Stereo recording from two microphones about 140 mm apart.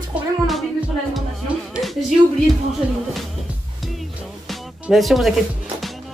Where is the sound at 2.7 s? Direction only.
Centre (ahead or behind).